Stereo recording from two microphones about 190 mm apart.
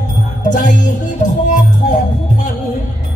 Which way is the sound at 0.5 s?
40° left (ahead or behind).